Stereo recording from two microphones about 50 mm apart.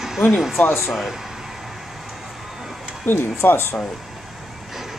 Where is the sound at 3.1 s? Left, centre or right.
Left.